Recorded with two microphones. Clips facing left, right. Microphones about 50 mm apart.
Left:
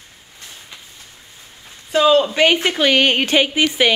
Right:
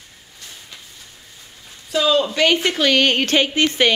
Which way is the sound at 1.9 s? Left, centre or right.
Left.